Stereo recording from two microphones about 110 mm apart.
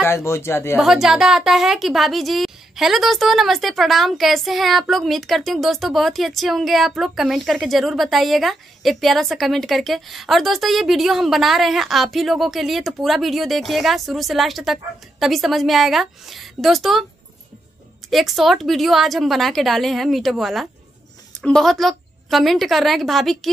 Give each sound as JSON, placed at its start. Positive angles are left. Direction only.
{"t": 0.0, "sound": "a man's voice", "side_deg": 25}
{"t": 0.7, "sound": "a woman's voice", "side_deg": -5}
{"t": 18.1, "sound": "a woman's voice", "side_deg": 0}